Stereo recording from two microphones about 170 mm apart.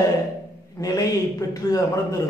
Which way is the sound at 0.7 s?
20° left (ahead or behind).